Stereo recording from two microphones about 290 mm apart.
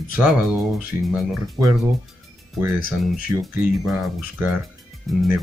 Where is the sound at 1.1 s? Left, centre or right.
Centre.